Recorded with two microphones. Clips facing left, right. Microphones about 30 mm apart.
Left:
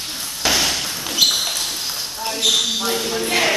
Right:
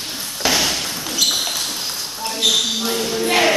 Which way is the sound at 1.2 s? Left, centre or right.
Centre.